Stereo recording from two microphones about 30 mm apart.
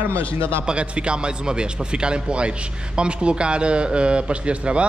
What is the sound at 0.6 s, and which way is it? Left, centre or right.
A man's voice, right.